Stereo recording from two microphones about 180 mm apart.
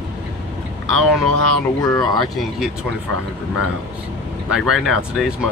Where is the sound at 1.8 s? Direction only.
25° left (ahead or behind).